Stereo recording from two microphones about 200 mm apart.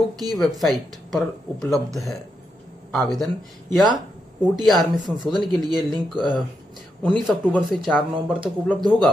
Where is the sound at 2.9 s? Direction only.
Centre (ahead or behind).